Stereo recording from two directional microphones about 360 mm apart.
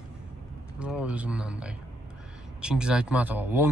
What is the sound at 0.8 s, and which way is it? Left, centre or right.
Speech, centre.